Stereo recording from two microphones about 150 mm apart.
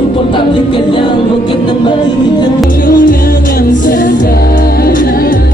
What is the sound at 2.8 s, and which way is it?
Music, 70° left (ahead or behind).